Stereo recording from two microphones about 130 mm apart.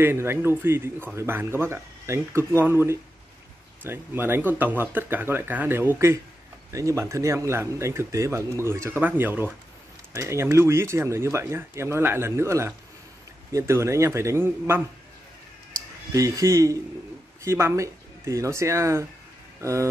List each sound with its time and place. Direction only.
0.0 s speech: 20° right (ahead or behind)
16.1 s speech: 25° right (ahead or behind)